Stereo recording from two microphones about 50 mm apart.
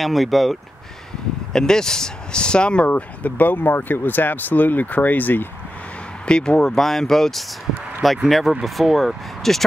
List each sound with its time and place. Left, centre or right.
0.0 s speech: centre
1.5 s speech: centre
2.9 s speech: left
6.2 s speech: centre